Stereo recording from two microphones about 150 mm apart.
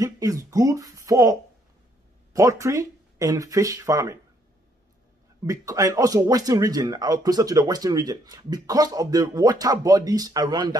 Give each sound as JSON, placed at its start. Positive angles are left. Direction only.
{"t": 0.0, "sound": "speech", "side_deg": -20}
{"t": 5.4, "sound": "speech", "side_deg": -20}